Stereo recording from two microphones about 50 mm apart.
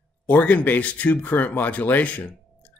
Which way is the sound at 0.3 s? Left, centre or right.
Left.